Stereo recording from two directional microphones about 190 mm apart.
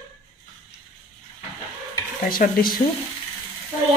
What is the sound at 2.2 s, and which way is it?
Speech, 50° left (ahead or behind).